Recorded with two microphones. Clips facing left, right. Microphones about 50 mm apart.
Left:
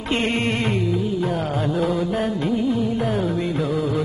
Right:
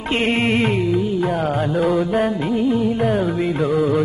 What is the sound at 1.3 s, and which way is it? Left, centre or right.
Music, centre.